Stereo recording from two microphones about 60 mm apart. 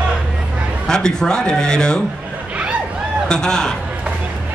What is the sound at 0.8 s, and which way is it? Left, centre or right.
A man's voice, centre.